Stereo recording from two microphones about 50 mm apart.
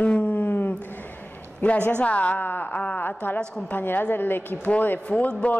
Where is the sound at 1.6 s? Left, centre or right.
Left.